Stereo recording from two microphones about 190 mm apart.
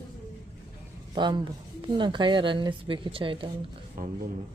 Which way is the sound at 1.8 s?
25° right (ahead or behind).